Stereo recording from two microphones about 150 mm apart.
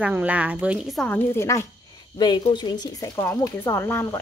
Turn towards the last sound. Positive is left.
turn(degrees=15)  # may be behind; listen again after turning